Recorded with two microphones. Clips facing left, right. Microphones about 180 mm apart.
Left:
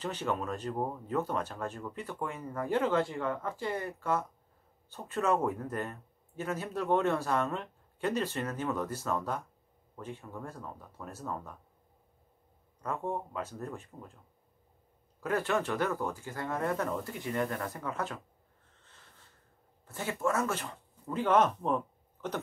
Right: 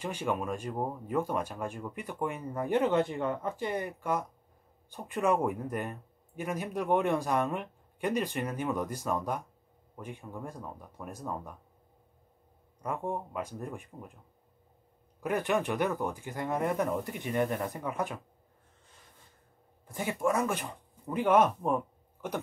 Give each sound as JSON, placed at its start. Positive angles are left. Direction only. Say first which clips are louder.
{"t": 0.0, "sound": "speech", "louder": "right 1 dB", "side_deg": -10}
{"t": 12.8, "sound": "speech", "louder": "right 1 dB", "side_deg": -15}
{"t": 15.1, "sound": "speech", "louder": "right 1 dB", "side_deg": -15}
{"t": 18.9, "sound": "a sound", "louder": "right 1 dB", "side_deg": -10}
{"t": 19.9, "sound": "speech", "louder": "right 2 dB", "side_deg": -15}